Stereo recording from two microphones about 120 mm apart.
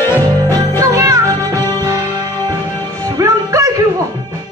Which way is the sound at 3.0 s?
25° right (ahead or behind).